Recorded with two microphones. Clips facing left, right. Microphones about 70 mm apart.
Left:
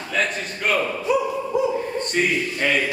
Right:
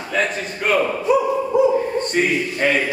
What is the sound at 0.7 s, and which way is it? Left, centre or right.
Bow-wow, centre.